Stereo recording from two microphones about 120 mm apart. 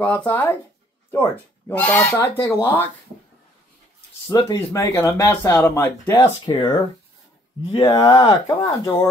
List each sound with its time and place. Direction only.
0.0 s speech: 15° left (ahead or behind)
4.3 s speech: 35° left (ahead or behind)
4.6 s speech: 20° left (ahead or behind)
6.4 s speech: 40° left (ahead or behind)
7.8 s speech: 35° left (ahead or behind)